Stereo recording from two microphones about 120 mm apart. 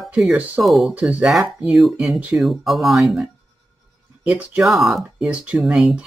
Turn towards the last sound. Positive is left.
turn(degrees=0)  # may be behind; listen again after turning